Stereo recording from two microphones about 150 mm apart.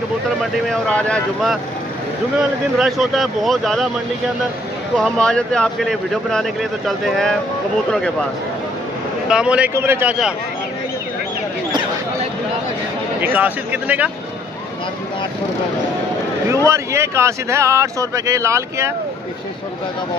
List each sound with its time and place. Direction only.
0.7 s speech: 5° left (ahead or behind)
4.9 s speech: 5° left (ahead or behind)
9.3 s speech: 5° right (ahead or behind)
13.2 s speech: 10° right (ahead or behind)
16.4 s speech: 20° right (ahead or behind)